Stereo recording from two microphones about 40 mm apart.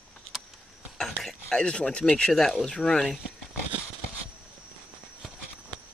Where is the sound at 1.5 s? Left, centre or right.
Left.